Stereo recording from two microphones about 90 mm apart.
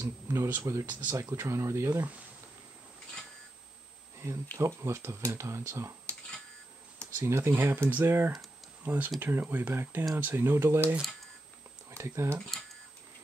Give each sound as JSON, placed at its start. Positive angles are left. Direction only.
{"t": 0.0, "sound": "speech", "side_deg": -35}
{"t": 0.8, "sound": "speech", "side_deg": -25}
{"t": 4.6, "sound": "speech", "side_deg": -30}
{"t": 7.2, "sound": "speech", "side_deg": -30}
{"t": 12.4, "sound": "speech", "side_deg": 5}